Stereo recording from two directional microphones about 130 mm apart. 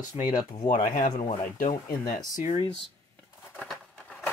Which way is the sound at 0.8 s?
65° left (ahead or behind).